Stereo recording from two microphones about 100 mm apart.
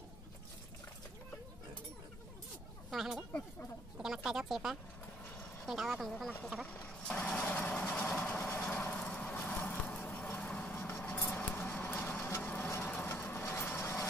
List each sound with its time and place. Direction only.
2.9 s speech: 5° right (ahead or behind)
7.0 s vehicle: 10° left (ahead or behind)
12.4 s a sound: 15° left (ahead or behind)
12.6 s vehicle: 25° left (ahead or behind)